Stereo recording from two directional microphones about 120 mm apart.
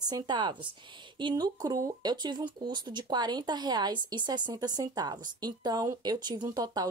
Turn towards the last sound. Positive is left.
turn(degrees=-35)  # may be behind; listen again after turning